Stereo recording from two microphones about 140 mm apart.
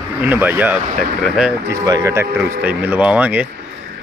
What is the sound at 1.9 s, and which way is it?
Speech, 20° right (ahead or behind).